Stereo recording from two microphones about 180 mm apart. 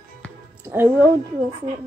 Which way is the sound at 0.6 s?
15° right (ahead or behind).